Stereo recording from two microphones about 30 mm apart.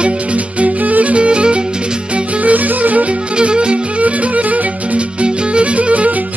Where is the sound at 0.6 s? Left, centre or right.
Right.